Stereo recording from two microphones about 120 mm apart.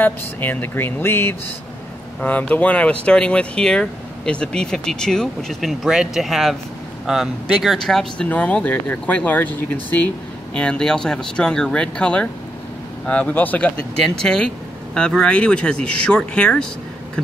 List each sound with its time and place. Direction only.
0.0 s speech: 15° left (ahead or behind)